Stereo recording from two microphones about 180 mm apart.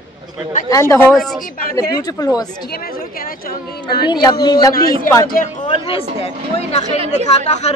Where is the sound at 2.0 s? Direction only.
20° left (ahead or behind).